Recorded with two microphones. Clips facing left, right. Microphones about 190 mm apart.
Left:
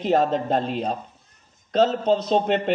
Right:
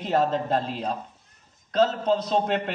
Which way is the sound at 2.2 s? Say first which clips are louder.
Left 3 dB; 25° left (ahead or behind).